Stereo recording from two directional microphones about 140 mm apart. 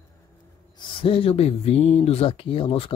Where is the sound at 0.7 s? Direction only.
40° left (ahead or behind).